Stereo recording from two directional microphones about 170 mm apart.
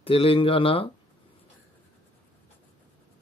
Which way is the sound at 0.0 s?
35° left (ahead or behind).